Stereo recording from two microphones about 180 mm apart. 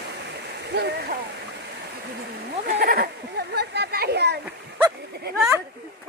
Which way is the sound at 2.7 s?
60° right (ahead or behind).